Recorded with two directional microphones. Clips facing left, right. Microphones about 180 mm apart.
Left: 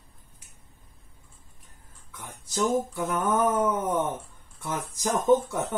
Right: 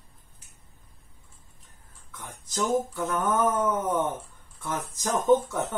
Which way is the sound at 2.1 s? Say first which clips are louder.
Left 1 dB; 10° left (ahead or behind).